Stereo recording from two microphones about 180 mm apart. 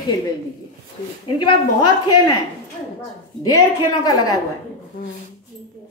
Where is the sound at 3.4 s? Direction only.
20° left (ahead or behind).